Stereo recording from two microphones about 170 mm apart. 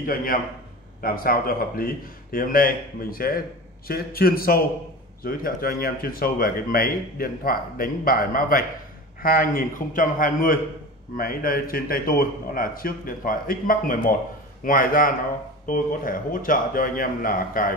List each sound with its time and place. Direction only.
0.0 s speech: 55° left (ahead or behind)